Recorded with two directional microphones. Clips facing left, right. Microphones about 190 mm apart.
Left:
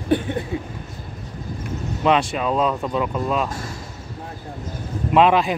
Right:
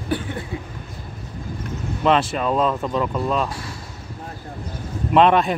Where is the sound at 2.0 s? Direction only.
Centre (ahead or behind).